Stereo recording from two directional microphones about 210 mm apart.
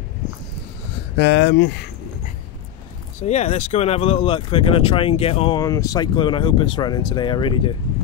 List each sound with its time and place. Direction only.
1.1 s speech: 55° left (ahead or behind)
3.2 s speech: 35° left (ahead or behind)
5.6 s speech: 15° left (ahead or behind)